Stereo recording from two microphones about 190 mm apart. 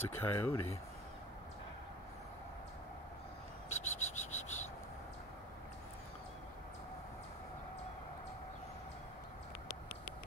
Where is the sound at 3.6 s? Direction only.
40° left (ahead or behind).